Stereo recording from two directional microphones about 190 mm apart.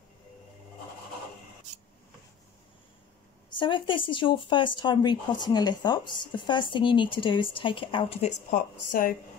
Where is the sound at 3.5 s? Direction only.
25° left (ahead or behind).